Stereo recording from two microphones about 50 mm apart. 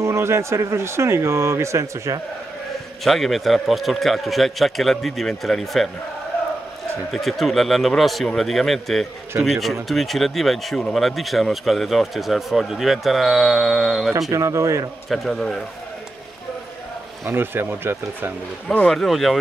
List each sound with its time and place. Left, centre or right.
0.0 s speech: right
3.0 s speech: centre
7.1 s speech: centre
14.3 s speech: right
15.0 s speech: centre
17.3 s speech: right
18.9 s speech: centre